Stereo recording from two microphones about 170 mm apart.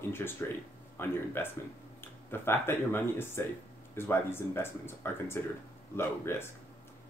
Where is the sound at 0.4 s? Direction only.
10° left (ahead or behind).